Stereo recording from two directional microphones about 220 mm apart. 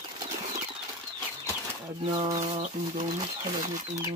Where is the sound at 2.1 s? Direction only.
15° right (ahead or behind).